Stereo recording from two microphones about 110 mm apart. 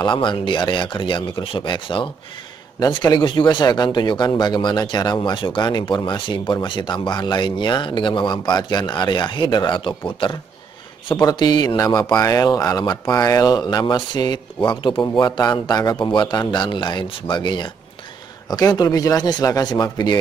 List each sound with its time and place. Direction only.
0.0 s speech: 45° left (ahead or behind)
2.8 s a man's voice: 35° left (ahead or behind)
11.2 s a man's voice: 35° left (ahead or behind)